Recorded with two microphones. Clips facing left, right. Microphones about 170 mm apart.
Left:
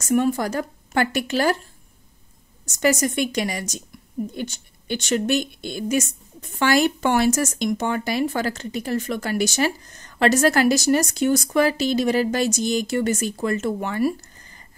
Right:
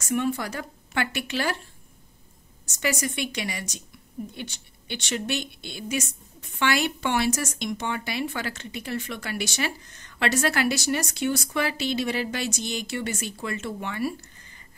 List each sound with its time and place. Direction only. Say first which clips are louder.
0.0 s a woman's voice: left 6 dB; 40° left (ahead or behind)
2.6 s a woman's voice: left 8 dB; 45° left (ahead or behind)